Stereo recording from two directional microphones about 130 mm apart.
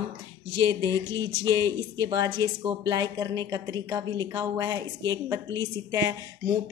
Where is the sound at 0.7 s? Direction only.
30° right (ahead or behind).